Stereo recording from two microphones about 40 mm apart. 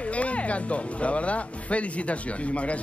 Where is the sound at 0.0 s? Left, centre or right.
Left.